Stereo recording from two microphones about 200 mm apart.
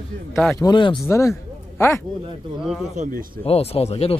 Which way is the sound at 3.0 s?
45° right (ahead or behind).